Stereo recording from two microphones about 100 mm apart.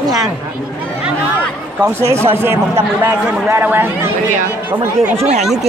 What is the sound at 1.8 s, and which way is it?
Speech, 30° right (ahead or behind).